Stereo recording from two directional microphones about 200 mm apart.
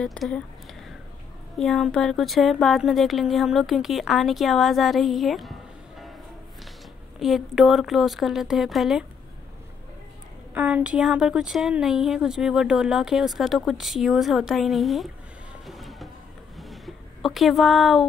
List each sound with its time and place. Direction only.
0.0 s speech: 5° left (ahead or behind)
7.2 s speech: centre (ahead or behind)
10.5 s speech: 5° right (ahead or behind)
15.6 s music: centre (ahead or behind)
16.5 s a sound: centre (ahead or behind)